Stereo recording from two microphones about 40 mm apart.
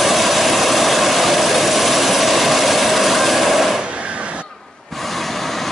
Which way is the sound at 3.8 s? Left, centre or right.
Right.